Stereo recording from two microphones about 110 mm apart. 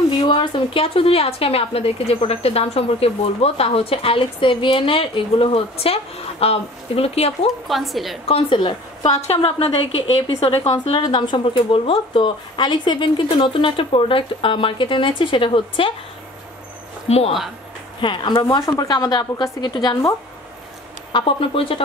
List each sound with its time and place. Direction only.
0.2 s a woman's voice: 45° left (ahead or behind); by 7.3 s 65° left (ahead or behind)
7.6 s a woman's voice: centre (ahead or behind)
8.3 s a woman's voice: 60° left (ahead or behind)
11.0 s a woman's voice: 45° left (ahead or behind)
18.0 s a woman's voice: 45° left (ahead or behind)
21.1 s a woman's voice: 50° left (ahead or behind)